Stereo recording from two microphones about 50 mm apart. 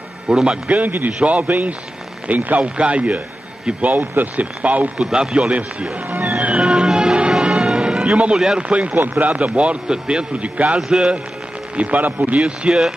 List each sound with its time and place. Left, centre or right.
0.3 s a man's voice: centre
0.7 s a man's voice: right
4.9 s a man's voice: centre
5.5 s a man's voice: right
6.0 s speech: right
6.4 s music: right
8.4 s a man's voice: centre
8.6 s a man's voice: right
11.7 s speech: right
12.4 s a man's voice: right